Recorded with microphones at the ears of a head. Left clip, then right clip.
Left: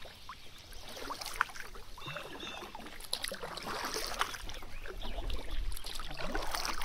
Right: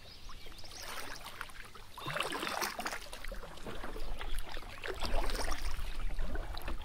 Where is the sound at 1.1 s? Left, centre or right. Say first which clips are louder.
Left 10 dB; left.